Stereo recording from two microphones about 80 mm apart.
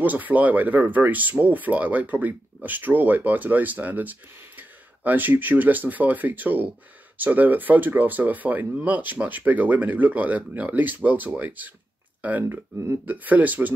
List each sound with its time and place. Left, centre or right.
0.0 s speech: right
12.4 s speech: right
13.0 s speech: right